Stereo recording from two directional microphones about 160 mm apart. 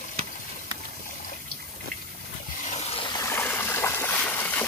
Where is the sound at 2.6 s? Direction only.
40° left (ahead or behind).